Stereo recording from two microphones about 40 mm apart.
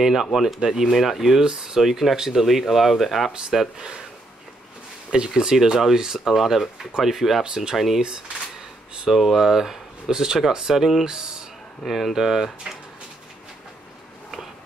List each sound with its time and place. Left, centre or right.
0.0 s speech: centre
1.4 s speech: right
1.8 s speech: centre
3.7 s speech: centre
5.4 s speech: centre
7.4 s speech: right
7.7 s speech: centre
9.0 s speech: centre